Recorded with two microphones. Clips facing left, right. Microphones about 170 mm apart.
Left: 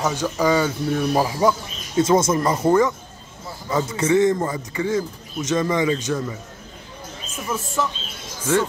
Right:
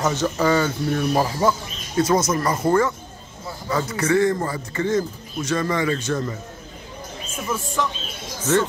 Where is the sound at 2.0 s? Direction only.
25° left (ahead or behind).